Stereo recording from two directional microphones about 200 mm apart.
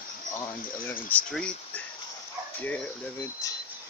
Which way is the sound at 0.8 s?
5° left (ahead or behind).